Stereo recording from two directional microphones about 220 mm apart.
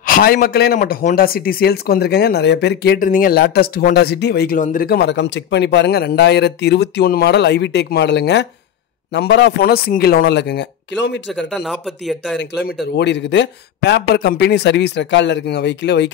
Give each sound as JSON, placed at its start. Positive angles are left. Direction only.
{"t": 0.0, "sound": "a man's voice", "side_deg": 40}
{"t": 11.3, "sound": "speech", "side_deg": 0}
{"t": 12.8, "sound": "a man's voice", "side_deg": 50}